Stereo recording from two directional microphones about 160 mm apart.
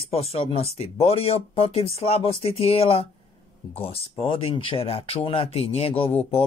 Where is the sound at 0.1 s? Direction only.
40° left (ahead or behind).